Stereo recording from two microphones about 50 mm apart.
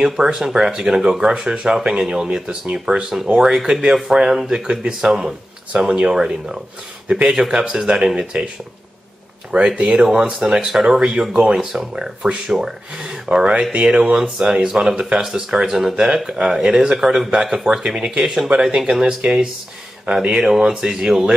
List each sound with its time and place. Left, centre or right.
0.0 s speech: centre
9.5 s speech: centre
11.5 s speech: centre
11.9 s speech: centre